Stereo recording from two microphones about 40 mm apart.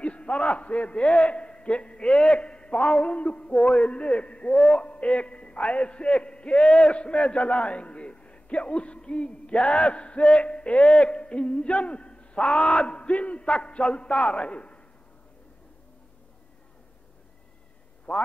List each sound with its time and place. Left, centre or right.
0.0 s a man's voice: left
18.1 s speech: left